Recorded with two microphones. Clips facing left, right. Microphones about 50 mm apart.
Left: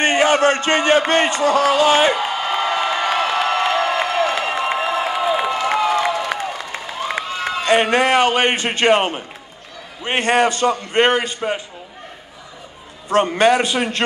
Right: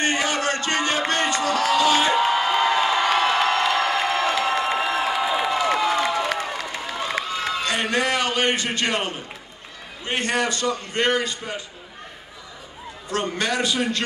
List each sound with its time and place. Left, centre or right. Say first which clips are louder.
0.0 s speech: left 8 dB; left
2.4 s crowd: even; centre
3.0 s a sound: left 1 dB; centre
3.7 s crowd: left 3 dB; centre
4.5 s a sound: left 2 dB; left
5.7 s crowd: left 3 dB; centre
7.7 s speech: left 10 dB; left
13.1 s speech: left 10 dB; left